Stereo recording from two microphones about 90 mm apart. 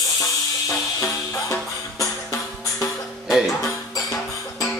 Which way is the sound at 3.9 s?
40° left (ahead or behind).